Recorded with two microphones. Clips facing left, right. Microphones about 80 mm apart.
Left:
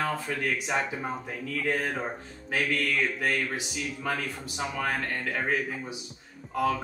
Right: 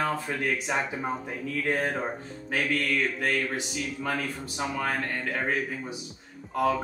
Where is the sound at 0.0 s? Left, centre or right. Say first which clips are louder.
Right 1 dB; centre.